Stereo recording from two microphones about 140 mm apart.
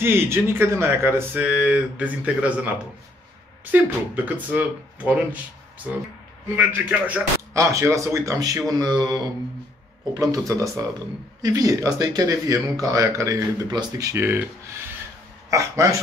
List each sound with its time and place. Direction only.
0.0 s speech: 15° right (ahead or behind)
3.7 s speech: 10° right (ahead or behind)
6.5 s speech: 10° right (ahead or behind)
7.5 s speech: 20° right (ahead or behind)
15.5 s speech: 20° right (ahead or behind)